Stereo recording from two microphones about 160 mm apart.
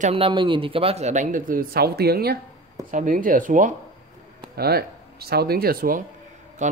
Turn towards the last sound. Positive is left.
turn(degrees=-50)  # may be behind; listen again after turning